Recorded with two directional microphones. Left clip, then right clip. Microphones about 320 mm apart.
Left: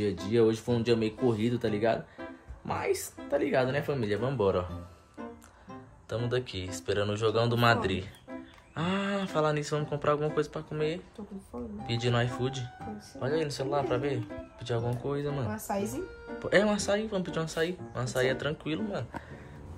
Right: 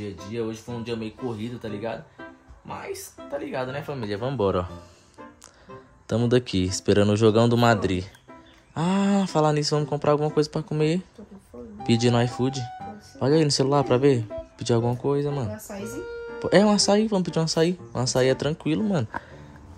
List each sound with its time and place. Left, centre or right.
0.0 s speech: centre; by 4.6 s right
6.0 s speech: right
15.6 s speech: centre
16.3 s speech: centre